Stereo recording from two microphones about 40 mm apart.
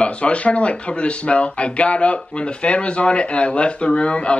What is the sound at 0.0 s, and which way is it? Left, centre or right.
Speech, left.